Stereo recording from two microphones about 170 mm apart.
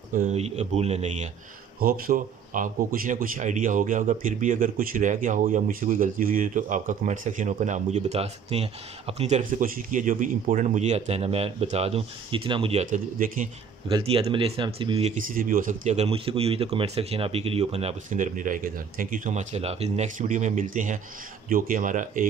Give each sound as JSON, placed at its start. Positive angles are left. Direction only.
{"t": 0.1, "sound": "speech", "side_deg": -45}
{"t": 1.8, "sound": "a man's voice", "side_deg": -60}
{"t": 9.4, "sound": "speech", "side_deg": -50}
{"t": 15.2, "sound": "a man's voice", "side_deg": -55}